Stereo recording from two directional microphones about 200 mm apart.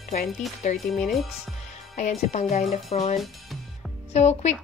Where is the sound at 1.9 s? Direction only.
35° left (ahead or behind).